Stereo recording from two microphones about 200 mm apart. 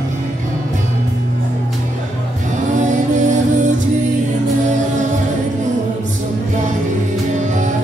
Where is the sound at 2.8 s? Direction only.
40° right (ahead or behind).